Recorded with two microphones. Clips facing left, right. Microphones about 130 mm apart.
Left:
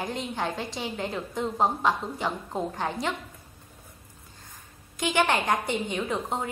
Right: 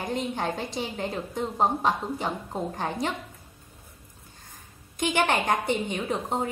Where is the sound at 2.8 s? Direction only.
45° right (ahead or behind).